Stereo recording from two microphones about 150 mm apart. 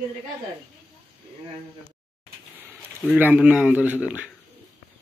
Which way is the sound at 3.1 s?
10° right (ahead or behind).